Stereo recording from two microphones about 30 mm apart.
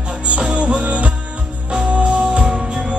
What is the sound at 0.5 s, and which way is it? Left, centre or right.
Music, right.